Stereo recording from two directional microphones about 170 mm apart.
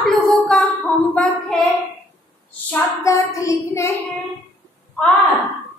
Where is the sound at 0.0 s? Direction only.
5° left (ahead or behind).